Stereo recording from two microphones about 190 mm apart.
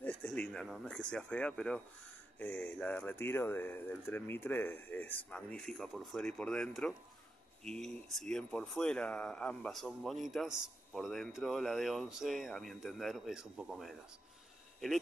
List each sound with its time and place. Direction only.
0.0 s speech: 5° left (ahead or behind)